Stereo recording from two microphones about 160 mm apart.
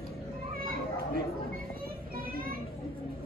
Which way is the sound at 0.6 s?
65° right (ahead or behind).